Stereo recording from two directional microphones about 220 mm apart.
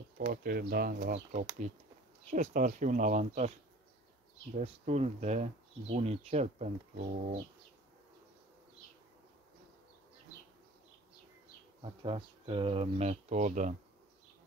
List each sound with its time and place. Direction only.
0.3 s speech: 45° right (ahead or behind)
4.6 s speech: 30° right (ahead or behind)
11.8 s speech: 25° right (ahead or behind)